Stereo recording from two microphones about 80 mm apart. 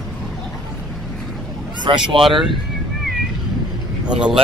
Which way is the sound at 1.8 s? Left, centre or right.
Right.